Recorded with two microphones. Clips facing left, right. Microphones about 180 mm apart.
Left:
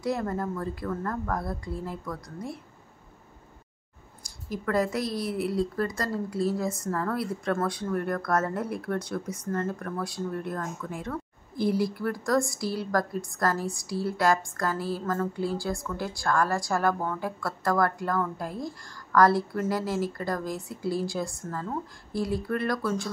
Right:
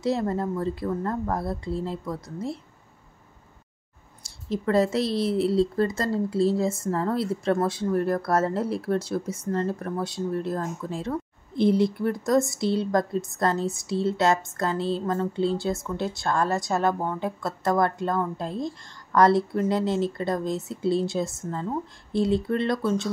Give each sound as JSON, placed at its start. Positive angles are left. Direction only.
{"t": 0.0, "sound": "speech", "side_deg": -25}
{"t": 4.2, "sound": "speech", "side_deg": -25}